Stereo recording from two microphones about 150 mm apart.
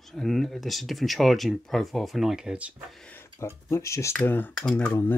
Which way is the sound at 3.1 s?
20° left (ahead or behind).